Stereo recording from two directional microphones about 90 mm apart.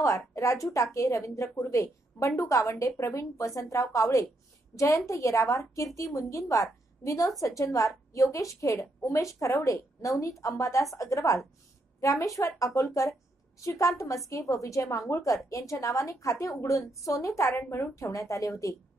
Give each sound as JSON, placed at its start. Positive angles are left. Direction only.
{"t": 0.3, "sound": "a woman's voice", "side_deg": 35}